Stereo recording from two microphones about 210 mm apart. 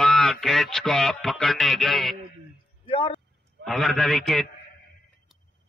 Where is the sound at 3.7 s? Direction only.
Centre (ahead or behind).